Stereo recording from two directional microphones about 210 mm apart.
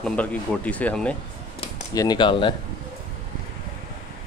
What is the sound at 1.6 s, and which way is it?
Speech, 20° left (ahead or behind).